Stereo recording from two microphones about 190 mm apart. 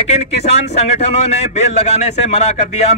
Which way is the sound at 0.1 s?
35° left (ahead or behind).